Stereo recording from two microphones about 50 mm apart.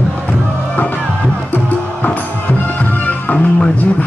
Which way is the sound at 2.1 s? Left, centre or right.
Left.